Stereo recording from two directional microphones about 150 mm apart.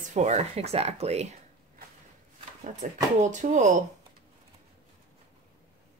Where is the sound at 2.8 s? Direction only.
55° right (ahead or behind).